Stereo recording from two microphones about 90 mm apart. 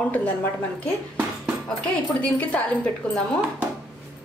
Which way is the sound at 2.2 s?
15° left (ahead or behind).